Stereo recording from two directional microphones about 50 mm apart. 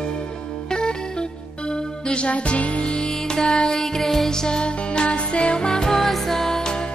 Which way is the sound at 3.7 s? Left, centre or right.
Centre.